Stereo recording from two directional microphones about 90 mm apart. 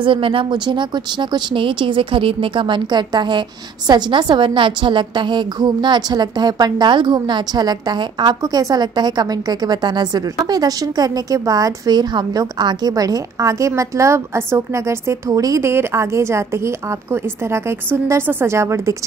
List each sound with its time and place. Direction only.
0.0 s speech: 75° right (ahead or behind); by 18.9 s 30° right (ahead or behind)